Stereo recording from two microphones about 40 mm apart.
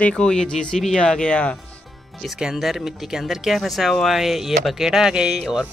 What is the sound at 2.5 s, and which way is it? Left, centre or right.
Speech, centre.